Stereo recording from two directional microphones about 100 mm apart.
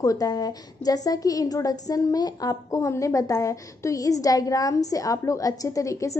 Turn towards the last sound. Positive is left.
turn(degrees=30)  # may be behind; listen again after turning